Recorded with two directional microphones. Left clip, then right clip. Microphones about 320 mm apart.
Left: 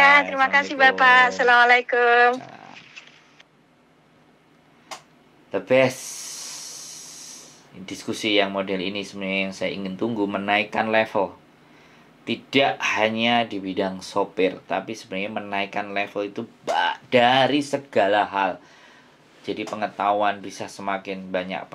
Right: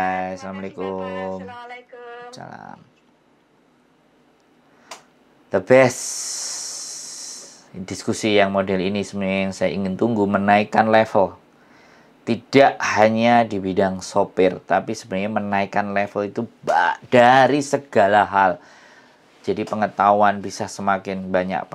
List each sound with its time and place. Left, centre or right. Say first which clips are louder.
0.0 s speech: left 8 dB; left
5.5 s speech: right 5 dB; right
12.3 s speech: right 6 dB; right